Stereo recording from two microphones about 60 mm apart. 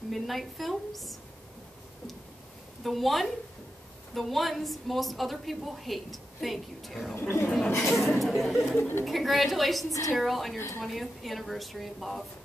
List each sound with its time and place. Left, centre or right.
0.1 s a woman's voice: centre
2.8 s a woman's voice: centre
7.2 s a woman's voice: left
7.9 s a woman's voice: centre
8.7 s a woman's voice: left
9.0 s a woman's voice: centre